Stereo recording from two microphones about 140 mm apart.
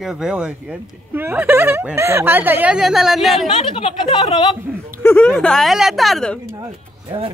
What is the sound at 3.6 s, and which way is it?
A woman's voice, 45° left (ahead or behind).